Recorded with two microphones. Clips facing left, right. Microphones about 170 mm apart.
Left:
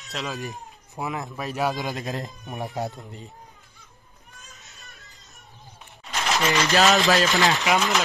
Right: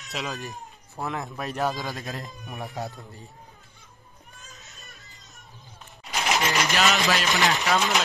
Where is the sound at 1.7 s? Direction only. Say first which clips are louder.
Left 4 dB; 20° left (ahead or behind).